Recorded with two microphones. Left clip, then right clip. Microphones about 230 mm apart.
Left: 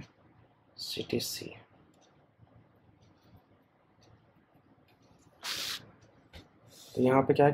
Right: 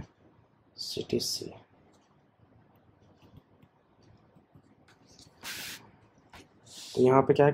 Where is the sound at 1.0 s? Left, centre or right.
Centre.